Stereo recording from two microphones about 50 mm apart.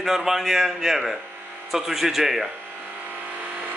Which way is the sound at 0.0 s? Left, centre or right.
Centre.